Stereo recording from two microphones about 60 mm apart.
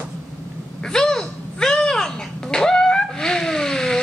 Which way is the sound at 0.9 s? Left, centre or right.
Centre.